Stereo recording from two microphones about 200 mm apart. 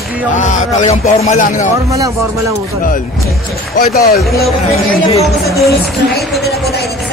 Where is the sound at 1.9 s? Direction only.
15° right (ahead or behind).